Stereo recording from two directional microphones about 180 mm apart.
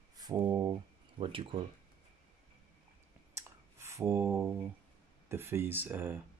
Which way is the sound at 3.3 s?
15° right (ahead or behind).